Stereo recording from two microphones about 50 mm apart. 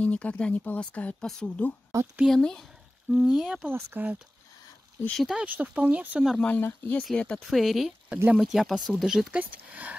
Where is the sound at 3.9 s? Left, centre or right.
Right.